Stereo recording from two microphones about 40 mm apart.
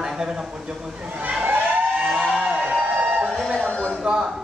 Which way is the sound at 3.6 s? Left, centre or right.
Left.